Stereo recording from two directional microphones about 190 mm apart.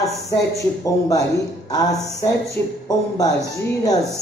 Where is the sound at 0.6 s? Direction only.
15° left (ahead or behind).